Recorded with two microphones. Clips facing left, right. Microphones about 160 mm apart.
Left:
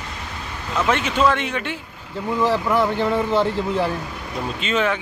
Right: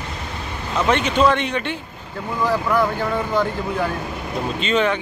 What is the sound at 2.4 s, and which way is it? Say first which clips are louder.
Speech: even; 25° left (ahead or behind).